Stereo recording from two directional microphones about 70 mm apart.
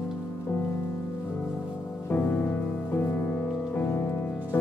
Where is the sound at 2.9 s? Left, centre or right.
Left.